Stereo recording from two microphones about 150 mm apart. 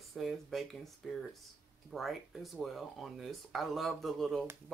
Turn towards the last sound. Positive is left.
turn(degrees=0)  # may be behind; listen again after turning